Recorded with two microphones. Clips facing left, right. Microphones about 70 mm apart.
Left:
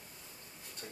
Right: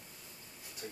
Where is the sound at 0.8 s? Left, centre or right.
Centre.